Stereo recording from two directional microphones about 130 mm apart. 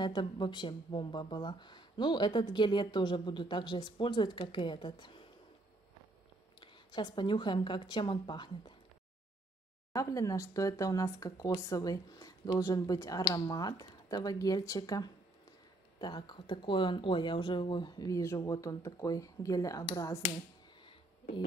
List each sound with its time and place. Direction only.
0.0 s speech: 35° left (ahead or behind)
6.6 s speech: 35° left (ahead or behind)
9.9 s speech: 25° left (ahead or behind)